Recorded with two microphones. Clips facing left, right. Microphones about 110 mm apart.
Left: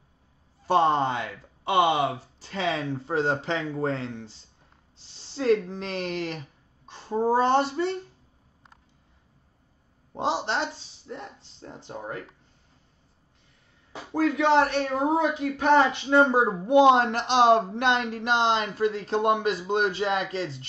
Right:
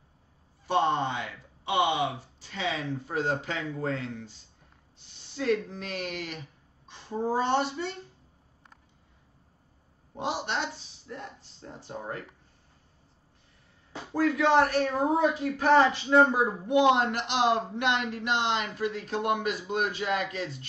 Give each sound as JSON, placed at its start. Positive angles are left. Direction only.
{"t": 0.7, "sound": "speech", "side_deg": 35}
{"t": 10.1, "sound": "speech", "side_deg": 30}
{"t": 14.3, "sound": "speech", "side_deg": 25}